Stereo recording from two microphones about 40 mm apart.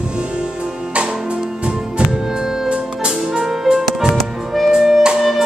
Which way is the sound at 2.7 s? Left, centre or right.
Right.